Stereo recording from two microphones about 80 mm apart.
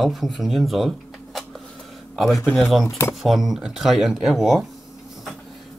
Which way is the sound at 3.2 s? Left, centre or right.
Centre.